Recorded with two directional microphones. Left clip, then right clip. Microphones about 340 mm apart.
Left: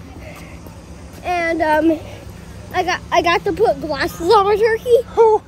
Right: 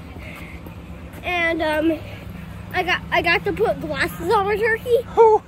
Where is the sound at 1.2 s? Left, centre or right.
Left.